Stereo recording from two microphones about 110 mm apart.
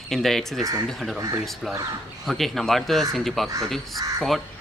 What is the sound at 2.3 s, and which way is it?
Speech, centre (ahead or behind).